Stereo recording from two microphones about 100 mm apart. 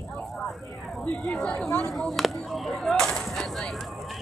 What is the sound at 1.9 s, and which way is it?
Speech, centre (ahead or behind).